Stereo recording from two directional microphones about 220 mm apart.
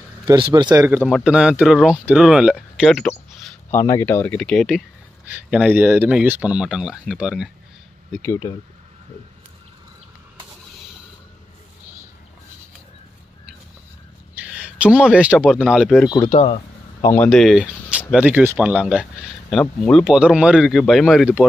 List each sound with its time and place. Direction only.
0.2 s speech: 20° right (ahead or behind); by 3.2 s centre (ahead or behind)
3.7 s speech: 10° left (ahead or behind)
8.1 s speech: 10° left (ahead or behind)
14.3 s speech: 5° right (ahead or behind)
16.3 s speech: 30° left (ahead or behind)
17.0 s speech: 10° left (ahead or behind)
17.3 s speech: centre (ahead or behind)